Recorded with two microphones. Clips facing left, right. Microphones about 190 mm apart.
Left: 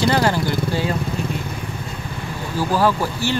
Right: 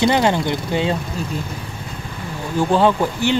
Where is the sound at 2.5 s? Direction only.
25° right (ahead or behind).